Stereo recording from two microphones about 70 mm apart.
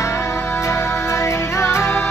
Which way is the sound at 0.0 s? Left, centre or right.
Left.